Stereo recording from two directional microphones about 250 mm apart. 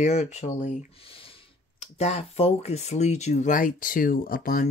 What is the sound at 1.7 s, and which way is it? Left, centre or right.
Speech, left.